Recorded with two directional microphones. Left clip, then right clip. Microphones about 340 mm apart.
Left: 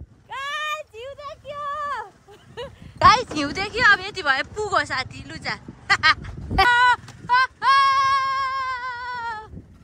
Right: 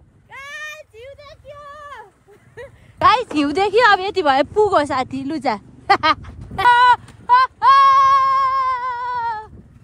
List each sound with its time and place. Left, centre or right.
0.3 s a sound: centre
3.0 s speech: centre
6.7 s female singing: centre